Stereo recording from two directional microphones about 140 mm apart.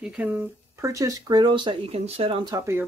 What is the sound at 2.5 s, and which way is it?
Speech, 20° right (ahead or behind).